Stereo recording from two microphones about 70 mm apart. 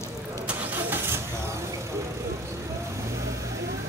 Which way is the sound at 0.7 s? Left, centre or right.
Right.